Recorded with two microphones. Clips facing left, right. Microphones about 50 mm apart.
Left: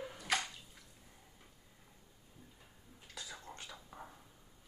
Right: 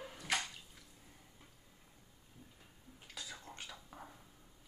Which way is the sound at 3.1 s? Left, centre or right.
Centre.